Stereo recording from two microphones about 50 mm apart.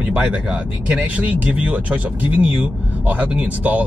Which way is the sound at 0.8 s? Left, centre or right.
Right.